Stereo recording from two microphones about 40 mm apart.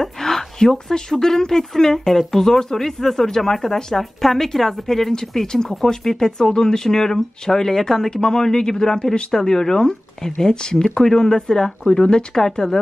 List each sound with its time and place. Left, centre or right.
0.0 s speech: centre
12.0 s speech: left
12.4 s speech: centre